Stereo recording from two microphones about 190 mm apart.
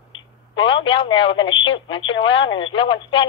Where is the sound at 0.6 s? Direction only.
25° left (ahead or behind).